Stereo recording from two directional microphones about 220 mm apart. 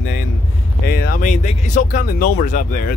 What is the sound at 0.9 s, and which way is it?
Speech, 45° left (ahead or behind).